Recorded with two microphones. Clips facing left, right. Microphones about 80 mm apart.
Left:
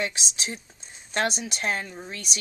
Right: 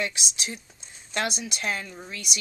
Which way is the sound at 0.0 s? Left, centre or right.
Left.